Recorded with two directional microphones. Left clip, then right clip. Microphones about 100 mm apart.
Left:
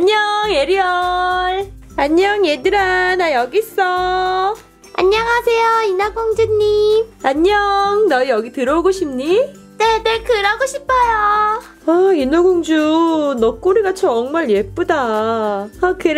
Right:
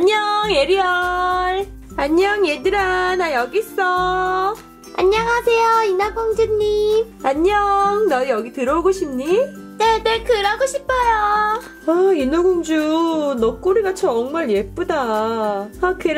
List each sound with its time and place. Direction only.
0.0 s music: centre (ahead or behind)
2.0 s a child's voice: 15° left (ahead or behind)
7.2 s a child's voice: 20° left (ahead or behind)
9.8 s speech: centre (ahead or behind)
11.8 s speech: 20° left (ahead or behind)